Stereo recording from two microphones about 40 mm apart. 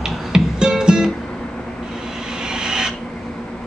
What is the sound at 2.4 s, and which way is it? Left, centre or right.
Vehicle, centre.